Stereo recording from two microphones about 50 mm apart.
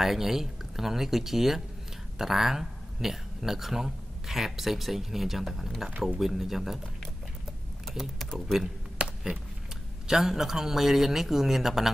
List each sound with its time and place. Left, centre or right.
0.0 s speech: centre
7.9 s speech: centre
9.0 s a sound: centre
10.0 s a man's voice: centre